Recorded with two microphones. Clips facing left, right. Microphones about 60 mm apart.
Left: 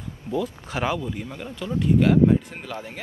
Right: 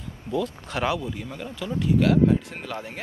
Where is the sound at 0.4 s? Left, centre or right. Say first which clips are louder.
Even; centre.